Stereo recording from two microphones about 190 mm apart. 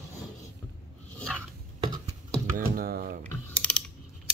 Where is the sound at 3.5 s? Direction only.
5° left (ahead or behind).